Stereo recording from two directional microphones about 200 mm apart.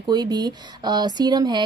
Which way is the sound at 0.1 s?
20° right (ahead or behind).